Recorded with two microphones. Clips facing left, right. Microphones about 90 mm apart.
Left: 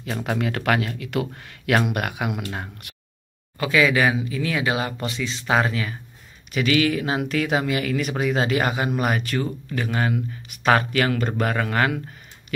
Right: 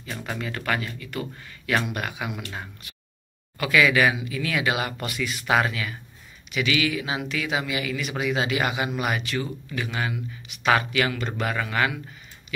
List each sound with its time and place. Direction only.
0.0 s speech: 60° left (ahead or behind)
1.9 s speech: 60° left (ahead or behind)
3.5 s speech: 30° left (ahead or behind); by 12.0 s 50° left (ahead or behind)